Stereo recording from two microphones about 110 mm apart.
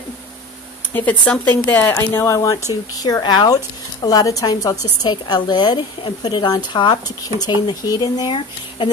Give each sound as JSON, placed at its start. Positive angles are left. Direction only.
{"t": 0.9, "sound": "speech", "side_deg": 10}